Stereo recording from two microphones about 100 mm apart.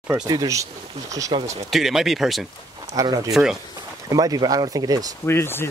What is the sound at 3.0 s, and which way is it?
Speech, 35° right (ahead or behind).